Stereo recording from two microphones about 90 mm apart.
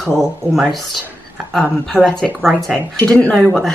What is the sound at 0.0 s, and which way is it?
Speech, centre (ahead or behind).